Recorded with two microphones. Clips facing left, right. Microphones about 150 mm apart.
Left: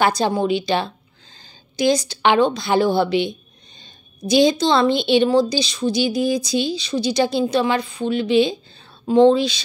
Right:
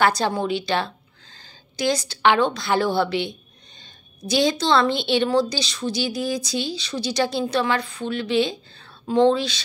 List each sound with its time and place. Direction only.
0.0 s a woman's voice: 15° left (ahead or behind)